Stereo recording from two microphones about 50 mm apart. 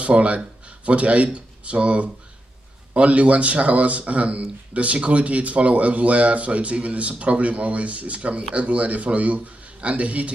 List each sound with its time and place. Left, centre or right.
0.0 s a man's voice: right